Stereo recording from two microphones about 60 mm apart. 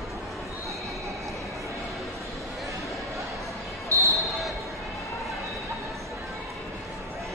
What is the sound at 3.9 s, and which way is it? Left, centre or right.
Basketball bounce, right.